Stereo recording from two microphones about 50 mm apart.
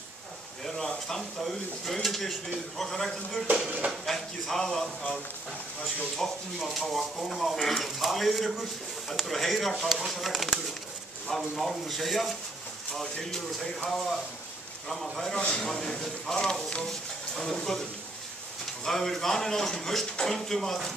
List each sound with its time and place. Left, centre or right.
0.7 s a sound: centre
1.4 s speech: centre
6.2 s speech: centre
15.3 s a man's voice: centre
18.9 s a man's voice: centre